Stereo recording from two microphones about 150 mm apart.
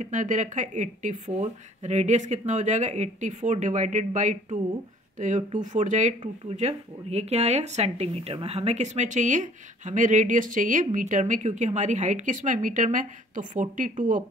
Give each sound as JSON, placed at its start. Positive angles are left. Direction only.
{"t": 0.0, "sound": "speech", "side_deg": -55}